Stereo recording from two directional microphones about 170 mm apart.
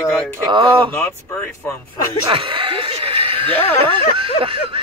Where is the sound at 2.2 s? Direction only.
30° right (ahead or behind).